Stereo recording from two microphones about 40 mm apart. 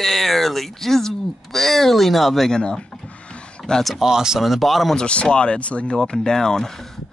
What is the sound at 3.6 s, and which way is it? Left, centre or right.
Speech, centre.